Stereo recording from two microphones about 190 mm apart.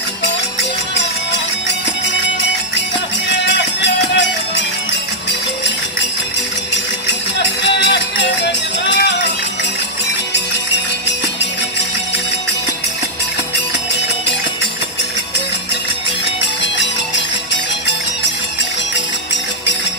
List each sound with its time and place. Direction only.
0.9 s music: 70° left (ahead or behind)
3.3 s music: 70° left (ahead or behind)
7.6 s music: 65° left (ahead or behind)